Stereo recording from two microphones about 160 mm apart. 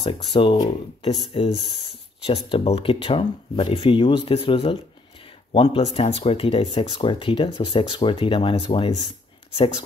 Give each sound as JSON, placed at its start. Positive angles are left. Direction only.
{"t": 0.0, "sound": "speech", "side_deg": 30}